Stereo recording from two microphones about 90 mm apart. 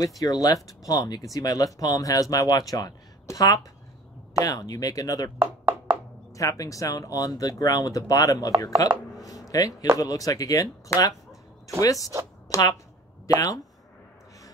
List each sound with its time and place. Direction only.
0.2 s speech: 45° left (ahead or behind)
6.3 s speech: 40° left (ahead or behind)
9.2 s a sound: 40° left (ahead or behind)
9.9 s speech: 40° left (ahead or behind)
12.4 s a sound: 40° left (ahead or behind)
13.4 s speech: 40° left (ahead or behind)